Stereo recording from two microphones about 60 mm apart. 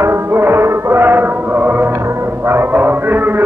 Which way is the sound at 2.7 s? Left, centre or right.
Right.